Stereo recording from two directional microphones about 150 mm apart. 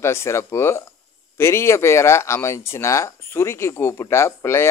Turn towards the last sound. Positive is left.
turn(degrees=15)  # may be behind; listen again after turning